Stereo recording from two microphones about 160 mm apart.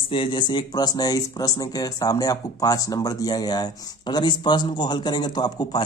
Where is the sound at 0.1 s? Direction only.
30° left (ahead or behind).